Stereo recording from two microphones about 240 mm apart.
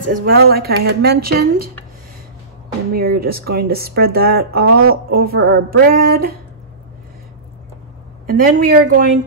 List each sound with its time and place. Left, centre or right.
0.1 s speech: right
2.9 s speech: right
8.3 s speech: right